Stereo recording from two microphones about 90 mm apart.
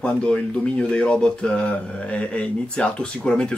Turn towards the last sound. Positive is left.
turn(degrees=10)  # may be behind; listen again after turning